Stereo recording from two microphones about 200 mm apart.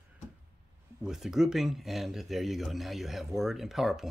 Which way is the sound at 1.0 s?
Centre (ahead or behind).